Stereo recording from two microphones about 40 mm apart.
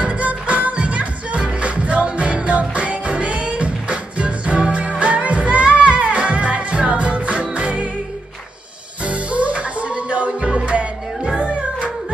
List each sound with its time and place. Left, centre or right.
0.0 s music: right
9.0 s music: right